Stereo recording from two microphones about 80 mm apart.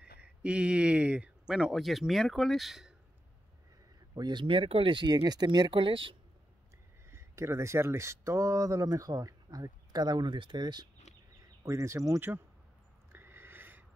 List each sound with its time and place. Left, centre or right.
0.0 s a sound: centre
1.5 s speech: centre
4.1 s speech: right
7.1 s speech: right
11.6 s speech: right
13.1 s a sound: right